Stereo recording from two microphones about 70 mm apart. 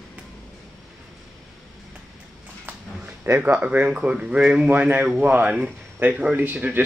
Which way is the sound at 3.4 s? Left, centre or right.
Right.